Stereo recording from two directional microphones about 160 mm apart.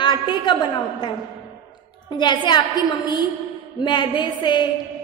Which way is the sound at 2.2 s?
30° left (ahead or behind).